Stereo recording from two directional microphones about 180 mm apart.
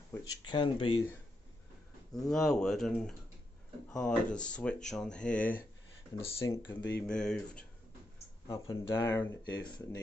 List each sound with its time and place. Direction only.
0.1 s speech: 20° left (ahead or behind)
2.3 s speech: 5° left (ahead or behind)
6.8 s speech: 70° left (ahead or behind)
7.1 s speech: 5° left (ahead or behind)
8.5 s speech: 15° left (ahead or behind)
9.5 s speech: 25° left (ahead or behind)